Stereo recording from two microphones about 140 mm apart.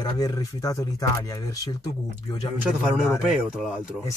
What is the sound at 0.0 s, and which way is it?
Speech, 30° left (ahead or behind).